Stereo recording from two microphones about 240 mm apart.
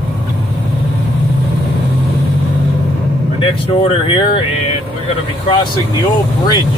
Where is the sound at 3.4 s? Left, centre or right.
Left.